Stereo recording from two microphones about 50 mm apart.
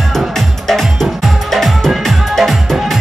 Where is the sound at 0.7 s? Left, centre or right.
Centre.